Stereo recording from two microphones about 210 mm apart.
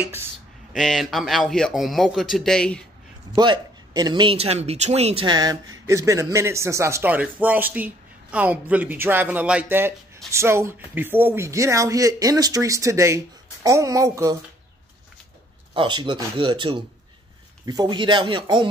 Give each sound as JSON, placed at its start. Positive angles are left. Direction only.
{"t": 0.7, "sound": "a man's voice", "side_deg": 0}
{"t": 3.3, "sound": "speech", "side_deg": -20}
{"t": 15.7, "sound": "speech", "side_deg": -20}